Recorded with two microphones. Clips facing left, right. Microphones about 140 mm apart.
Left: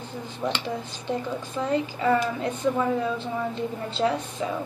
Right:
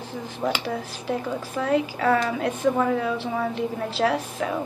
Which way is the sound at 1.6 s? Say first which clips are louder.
Right 2 dB; 75° right (ahead or behind).